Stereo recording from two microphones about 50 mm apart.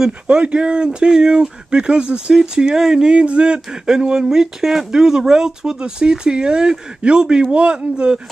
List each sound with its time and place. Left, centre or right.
0.3 s speech: right